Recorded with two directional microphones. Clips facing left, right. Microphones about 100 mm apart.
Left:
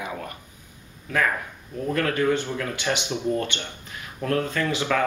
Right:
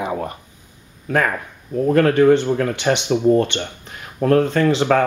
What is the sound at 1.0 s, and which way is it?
Speech, 45° right (ahead or behind).